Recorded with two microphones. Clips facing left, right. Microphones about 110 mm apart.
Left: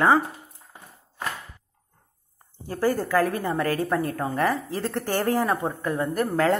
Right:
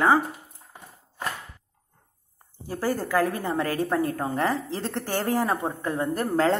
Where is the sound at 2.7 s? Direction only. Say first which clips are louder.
Left 3 dB; 15° right (ahead or behind).